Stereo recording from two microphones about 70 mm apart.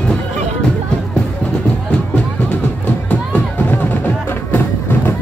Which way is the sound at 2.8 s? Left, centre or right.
Centre.